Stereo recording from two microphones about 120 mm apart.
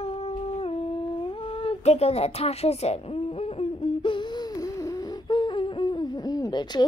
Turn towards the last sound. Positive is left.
turn(degrees=35)  # may be behind; listen again after turning